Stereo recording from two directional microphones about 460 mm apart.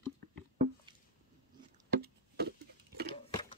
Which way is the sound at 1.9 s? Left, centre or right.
Right.